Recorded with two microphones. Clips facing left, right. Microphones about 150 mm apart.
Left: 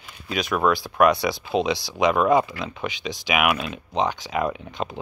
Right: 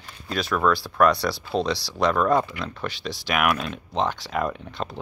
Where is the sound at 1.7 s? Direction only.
20° left (ahead or behind).